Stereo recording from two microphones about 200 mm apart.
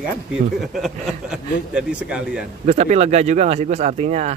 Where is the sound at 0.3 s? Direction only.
Centre (ahead or behind).